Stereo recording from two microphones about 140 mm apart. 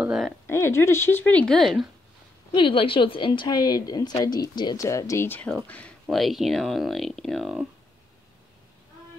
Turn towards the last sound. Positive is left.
turn(degrees=0)  # may be behind; listen again after turning